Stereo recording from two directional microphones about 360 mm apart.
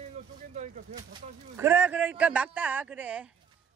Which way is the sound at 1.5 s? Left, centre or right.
Centre.